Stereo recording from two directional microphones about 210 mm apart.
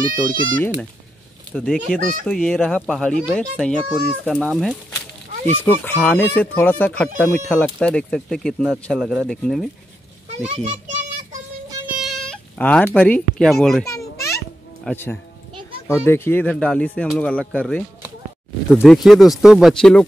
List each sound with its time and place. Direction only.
0.0 s speech: 40° right (ahead or behind)
1.5 s speech: 5° left (ahead or behind)
10.6 s a child's voice: 35° right (ahead or behind)
12.0 s speech: centre (ahead or behind)
13.8 s children playing: 15° left (ahead or behind)
14.9 s speech: 10° left (ahead or behind)